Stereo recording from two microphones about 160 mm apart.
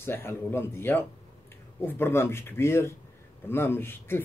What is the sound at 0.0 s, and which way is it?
Speech, 15° left (ahead or behind).